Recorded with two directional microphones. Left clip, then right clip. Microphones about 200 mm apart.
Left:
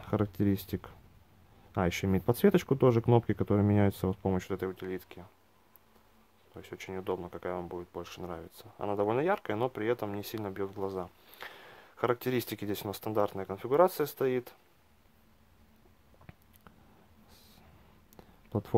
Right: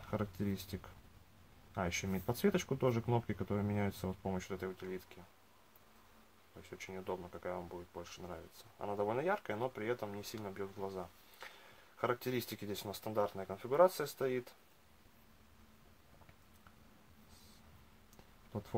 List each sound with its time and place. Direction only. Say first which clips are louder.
0.0 s speech: left 9 dB; 40° left (ahead or behind)
6.6 s speech: left 7 dB; 40° left (ahead or behind)
18.1 s a sound: left 10 dB; 45° left (ahead or behind)